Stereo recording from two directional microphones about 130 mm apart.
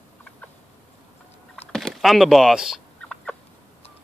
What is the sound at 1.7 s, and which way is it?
Speech, centre (ahead or behind).